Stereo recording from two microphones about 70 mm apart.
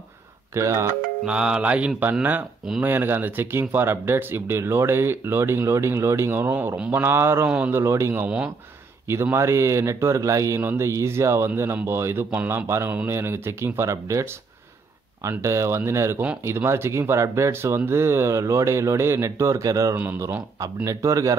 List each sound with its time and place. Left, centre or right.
0.6 s speech: right
1.2 s music: centre
2.8 s speech: right
7.4 s speech: centre
7.7 s speech: right
15.2 s speech: right